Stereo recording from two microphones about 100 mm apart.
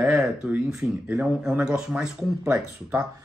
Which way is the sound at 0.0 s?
10° right (ahead or behind).